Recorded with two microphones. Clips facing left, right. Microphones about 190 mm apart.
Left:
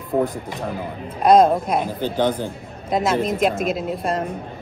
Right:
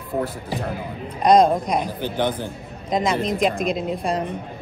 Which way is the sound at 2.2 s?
10° left (ahead or behind).